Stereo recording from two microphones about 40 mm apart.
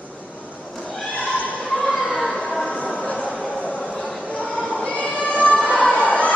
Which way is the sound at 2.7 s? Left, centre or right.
Left.